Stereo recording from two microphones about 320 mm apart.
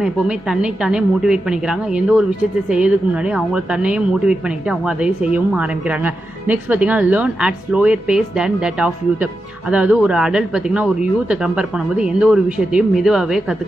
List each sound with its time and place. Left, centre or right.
0.0 s a woman's voice: centre